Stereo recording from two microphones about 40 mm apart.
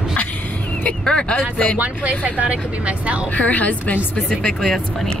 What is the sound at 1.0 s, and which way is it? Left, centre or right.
Speech, left.